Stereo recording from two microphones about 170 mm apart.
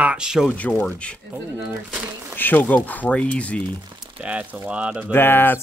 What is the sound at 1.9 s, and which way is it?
Crumpling, 10° right (ahead or behind).